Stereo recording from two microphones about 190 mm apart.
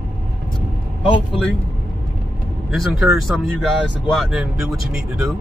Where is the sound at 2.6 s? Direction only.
Centre (ahead or behind).